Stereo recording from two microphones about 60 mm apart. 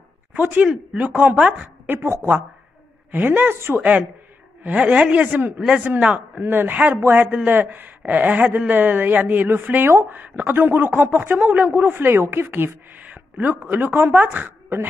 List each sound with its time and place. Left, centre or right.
0.3 s a man's voice: right
1.9 s a woman's voice: right
3.1 s speech: right
3.7 s a man's voice: right
7.2 s a man's voice: right